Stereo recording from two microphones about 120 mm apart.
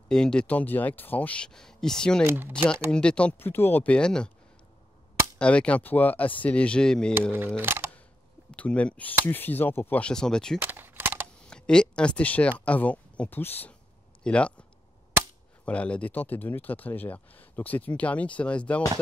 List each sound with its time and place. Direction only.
0.1 s speech: 5° left (ahead or behind)
2.2 s speech: 20° right (ahead or behind)
2.5 s speech: 10° left (ahead or behind)
5.4 s speech: 10° left (ahead or behind)
7.3 s speech: 15° right (ahead or behind)
8.5 s speech: 10° left (ahead or behind)
10.6 s a sound: 15° right (ahead or behind)
11.4 s speech: 5° left (ahead or behind)
15.6 s speech: 10° left (ahead or behind)